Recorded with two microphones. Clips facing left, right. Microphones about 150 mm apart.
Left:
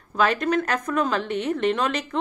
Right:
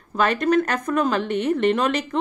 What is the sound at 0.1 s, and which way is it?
A woman's voice, centre (ahead or behind).